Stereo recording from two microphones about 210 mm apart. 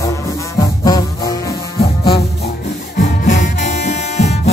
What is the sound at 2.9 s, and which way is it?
Music, 40° left (ahead or behind).